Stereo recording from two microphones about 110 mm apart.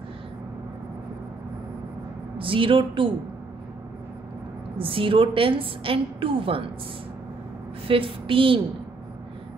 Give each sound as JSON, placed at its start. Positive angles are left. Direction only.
{"t": 2.3, "sound": "speech", "side_deg": -55}
{"t": 4.7, "sound": "a woman's voice", "side_deg": -55}
{"t": 7.9, "sound": "speech", "side_deg": -55}